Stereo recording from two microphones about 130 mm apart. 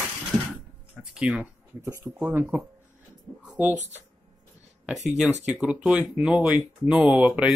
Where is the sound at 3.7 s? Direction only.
65° right (ahead or behind).